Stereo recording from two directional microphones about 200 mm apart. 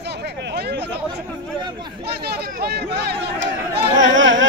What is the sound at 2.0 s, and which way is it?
Speech, 55° right (ahead or behind).